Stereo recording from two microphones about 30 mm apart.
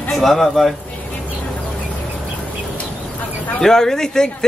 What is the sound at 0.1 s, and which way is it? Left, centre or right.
Speech, centre.